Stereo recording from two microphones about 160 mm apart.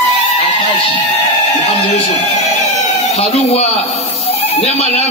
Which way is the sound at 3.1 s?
40° left (ahead or behind).